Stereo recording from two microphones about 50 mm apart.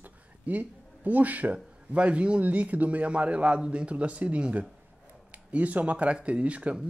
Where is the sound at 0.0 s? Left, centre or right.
Right.